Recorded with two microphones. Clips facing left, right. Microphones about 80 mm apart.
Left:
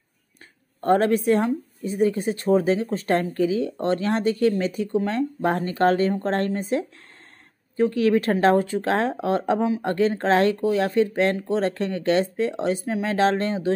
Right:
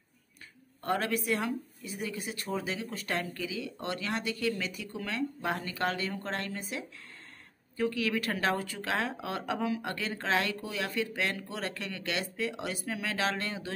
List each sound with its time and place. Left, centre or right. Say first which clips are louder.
0.7 s speech: left 12 dB; left